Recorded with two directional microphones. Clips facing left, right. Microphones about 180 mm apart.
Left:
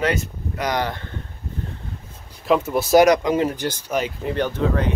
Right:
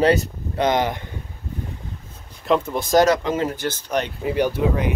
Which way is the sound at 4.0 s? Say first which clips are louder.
Right 3 dB; 5° right (ahead or behind).